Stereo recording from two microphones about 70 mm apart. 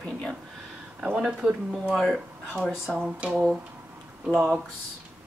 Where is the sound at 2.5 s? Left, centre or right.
Centre.